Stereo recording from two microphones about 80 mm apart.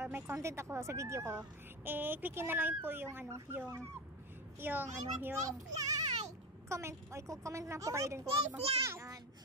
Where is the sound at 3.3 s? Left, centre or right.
Right.